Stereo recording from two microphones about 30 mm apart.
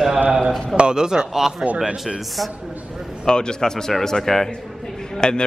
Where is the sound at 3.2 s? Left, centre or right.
Left.